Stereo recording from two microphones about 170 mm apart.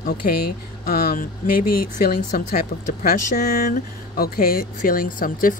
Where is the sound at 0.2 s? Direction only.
60° left (ahead or behind).